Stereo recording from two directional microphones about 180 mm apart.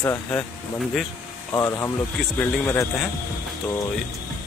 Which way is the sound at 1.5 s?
15° left (ahead or behind).